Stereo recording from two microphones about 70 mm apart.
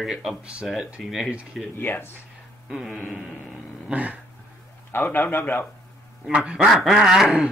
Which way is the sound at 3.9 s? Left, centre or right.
Right.